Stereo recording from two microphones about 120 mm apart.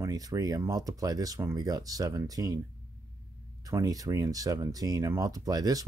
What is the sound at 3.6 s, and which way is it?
Speech, 30° right (ahead or behind).